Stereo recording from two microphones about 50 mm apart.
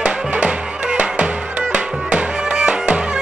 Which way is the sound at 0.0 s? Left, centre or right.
Right.